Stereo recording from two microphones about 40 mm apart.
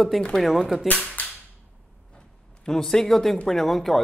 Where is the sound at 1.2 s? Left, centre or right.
Left.